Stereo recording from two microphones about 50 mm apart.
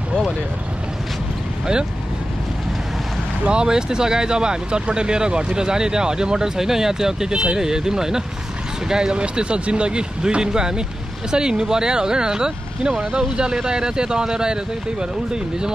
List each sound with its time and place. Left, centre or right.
3.4 s speech: centre